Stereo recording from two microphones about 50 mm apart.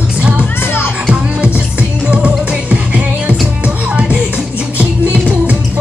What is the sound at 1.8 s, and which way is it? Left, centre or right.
Music, right.